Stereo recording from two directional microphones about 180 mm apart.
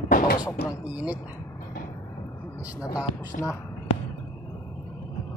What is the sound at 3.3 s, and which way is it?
Speech, 50° left (ahead or behind).